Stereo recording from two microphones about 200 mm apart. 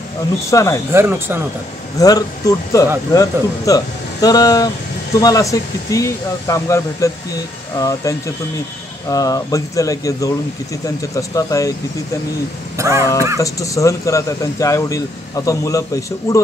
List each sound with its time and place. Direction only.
0.5 s a man's voice: 15° left (ahead or behind)
0.9 s speech: 10° right (ahead or behind)
2.0 s a man's voice: 20° left (ahead or behind)
12.7 s speech: 15° right (ahead or behind)
13.4 s a man's voice: 15° left (ahead or behind)